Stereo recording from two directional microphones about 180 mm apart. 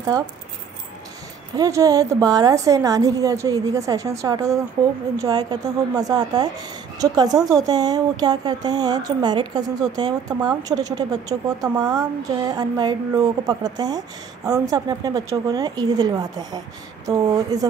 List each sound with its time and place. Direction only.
1.6 s speech: 20° right (ahead or behind)